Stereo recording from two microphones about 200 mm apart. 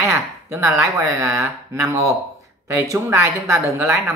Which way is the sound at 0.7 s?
15° right (ahead or behind).